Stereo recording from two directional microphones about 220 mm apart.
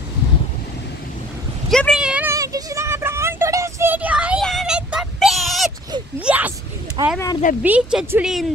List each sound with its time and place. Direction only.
1.7 s a sound: centre (ahead or behind)
7.0 s speech: 20° right (ahead or behind)
7.6 s a woman's voice: 5° right (ahead or behind)